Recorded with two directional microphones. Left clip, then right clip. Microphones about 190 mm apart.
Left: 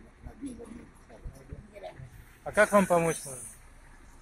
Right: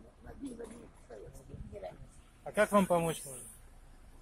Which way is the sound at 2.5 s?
Centre (ahead or behind).